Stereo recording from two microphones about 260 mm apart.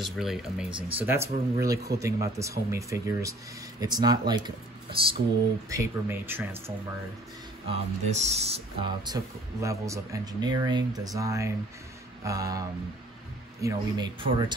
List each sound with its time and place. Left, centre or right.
0.0 s speech: centre
0.7 s speech: centre
0.9 s speech: centre
7.6 s speech: right